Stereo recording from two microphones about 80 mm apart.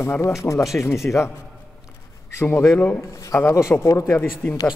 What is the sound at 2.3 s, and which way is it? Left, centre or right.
A man's voice, left.